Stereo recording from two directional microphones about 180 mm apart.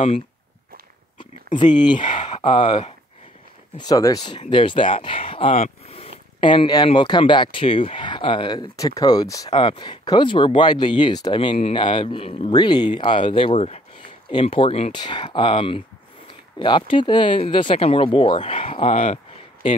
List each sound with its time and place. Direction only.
1.1 s speech: 25° left (ahead or behind)